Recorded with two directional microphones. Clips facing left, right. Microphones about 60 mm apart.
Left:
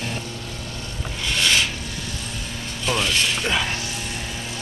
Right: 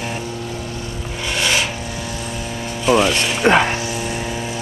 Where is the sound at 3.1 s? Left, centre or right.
Centre.